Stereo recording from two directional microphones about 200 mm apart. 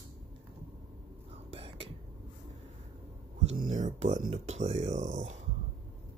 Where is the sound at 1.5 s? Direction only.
25° right (ahead or behind).